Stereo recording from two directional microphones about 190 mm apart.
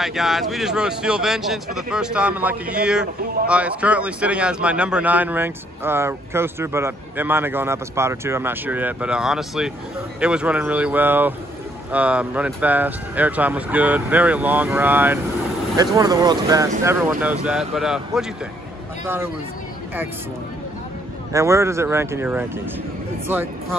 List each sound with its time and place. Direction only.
0.0 s a man's voice: centre (ahead or behind)
15.7 s a man's voice: 20° right (ahead or behind); by 18.2 s centre (ahead or behind)
21.3 s a man's voice: 15° right (ahead or behind)